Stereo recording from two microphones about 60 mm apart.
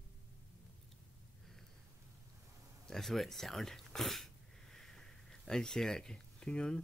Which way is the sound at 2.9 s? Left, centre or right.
Centre.